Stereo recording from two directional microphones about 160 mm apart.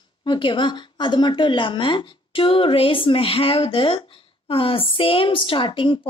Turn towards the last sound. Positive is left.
turn(degrees=30)  # may be behind; listen again after turning